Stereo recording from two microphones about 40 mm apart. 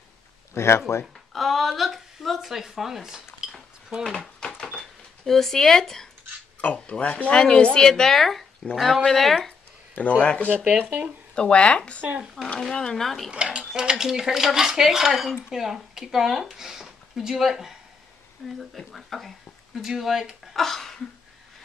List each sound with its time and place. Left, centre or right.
0.6 s speech: left
1.3 s speech: centre
3.4 s a sound: centre
4.7 s speech: centre
6.6 s speech: left
7.9 s speech: centre
9.9 s speech: left
12.0 s speech: right
12.7 s speech: centre
13.3 s speech: right
13.7 s speech: centre
18.9 s speech: centre
19.8 s speech: centre
20.5 s speech: centre